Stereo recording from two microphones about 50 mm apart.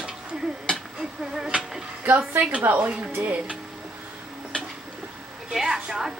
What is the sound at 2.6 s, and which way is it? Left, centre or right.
Speech, right.